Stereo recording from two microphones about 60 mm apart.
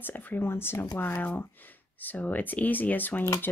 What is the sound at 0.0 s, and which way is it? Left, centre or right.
Speech, left.